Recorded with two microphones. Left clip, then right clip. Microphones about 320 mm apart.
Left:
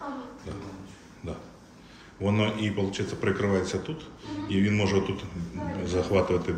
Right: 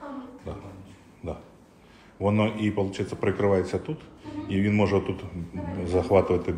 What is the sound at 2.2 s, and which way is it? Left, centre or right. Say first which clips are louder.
A man's voice: right 2 dB; centre.